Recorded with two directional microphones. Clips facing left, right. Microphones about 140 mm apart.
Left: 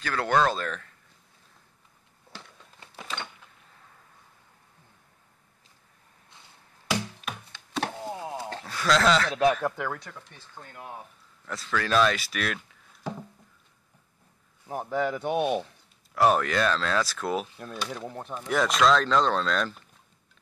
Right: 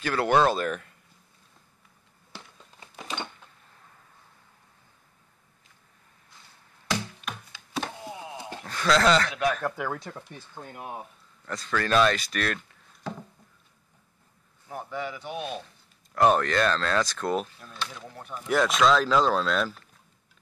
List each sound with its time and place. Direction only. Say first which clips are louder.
0.0 s speech: right 2 dB; 5° right (ahead or behind)
6.9 s music: left 1 dB; 5° left (ahead or behind)
8.0 s a sound: left 4 dB; 40° left (ahead or behind)
8.6 s speech: right 1 dB; centre (ahead or behind)
9.3 s speech: left 4 dB; 25° left (ahead or behind)
9.8 s speech: right 1 dB; 5° right (ahead or behind)
10.5 s speech: right 3 dB; 20° right (ahead or behind)
11.4 s speech: right 1 dB; 5° left (ahead or behind)
14.7 s speech: left 6 dB; 40° left (ahead or behind)
16.2 s speech: right 1 dB; 5° left (ahead or behind)
18.1 s speech: left 3 dB; 30° left (ahead or behind)
18.4 s speech: right 1 dB; centre (ahead or behind)